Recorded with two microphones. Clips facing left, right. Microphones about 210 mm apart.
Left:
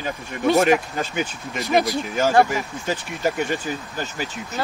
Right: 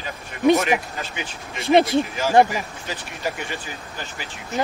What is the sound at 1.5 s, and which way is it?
Speech, 30° right (ahead or behind).